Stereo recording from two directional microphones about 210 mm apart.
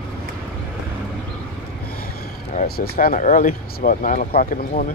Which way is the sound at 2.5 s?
45° left (ahead or behind).